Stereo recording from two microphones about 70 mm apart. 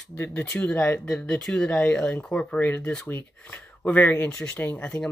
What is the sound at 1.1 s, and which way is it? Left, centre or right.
Speech, centre.